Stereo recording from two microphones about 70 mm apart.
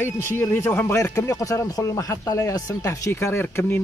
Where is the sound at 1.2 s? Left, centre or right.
Left.